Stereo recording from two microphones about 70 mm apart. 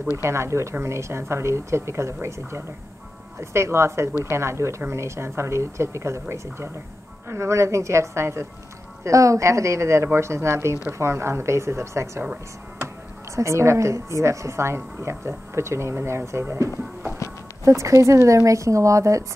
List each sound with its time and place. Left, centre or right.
0.2 s a woman's voice: right
13.4 s a woman's voice: right